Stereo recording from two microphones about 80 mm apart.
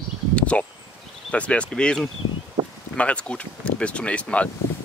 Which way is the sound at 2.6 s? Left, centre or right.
Right.